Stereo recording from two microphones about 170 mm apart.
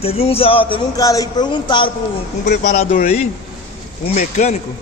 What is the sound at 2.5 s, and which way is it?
Speech, 50° left (ahead or behind).